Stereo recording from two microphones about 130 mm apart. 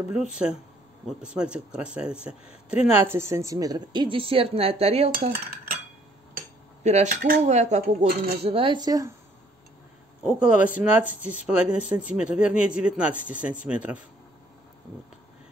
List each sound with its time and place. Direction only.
1.0 s a woman's voice: 5° right (ahead or behind); by 5.3 s 50° right (ahead or behind)
6.3 s speech: 65° right (ahead or behind); by 9.1 s 30° right (ahead or behind)
10.2 s speech: 10° right (ahead or behind)